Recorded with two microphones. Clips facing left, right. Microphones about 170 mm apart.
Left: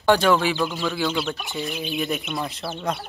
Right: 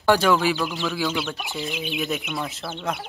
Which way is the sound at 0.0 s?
Centre (ahead or behind).